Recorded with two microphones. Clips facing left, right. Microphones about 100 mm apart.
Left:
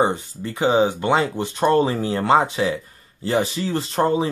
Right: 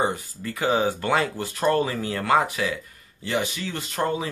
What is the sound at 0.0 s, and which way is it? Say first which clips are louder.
Speech: left 5 dB; 25° left (ahead or behind).